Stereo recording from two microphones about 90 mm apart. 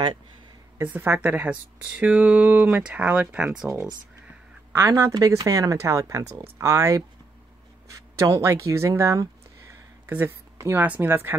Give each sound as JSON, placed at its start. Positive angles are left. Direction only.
{"t": 0.8, "sound": "speech", "side_deg": -20}
{"t": 10.0, "sound": "speech", "side_deg": -20}